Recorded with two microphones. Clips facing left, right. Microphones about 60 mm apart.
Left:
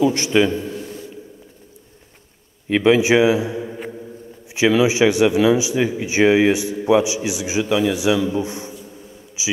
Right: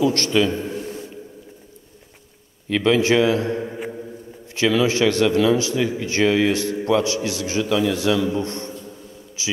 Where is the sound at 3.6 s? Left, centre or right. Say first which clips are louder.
Right 1 dB; centre.